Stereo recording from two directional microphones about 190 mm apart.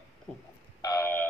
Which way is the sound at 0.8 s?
15° left (ahead or behind).